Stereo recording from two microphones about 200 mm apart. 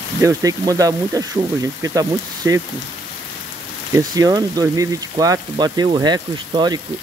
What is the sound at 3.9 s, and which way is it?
Speech, 15° right (ahead or behind).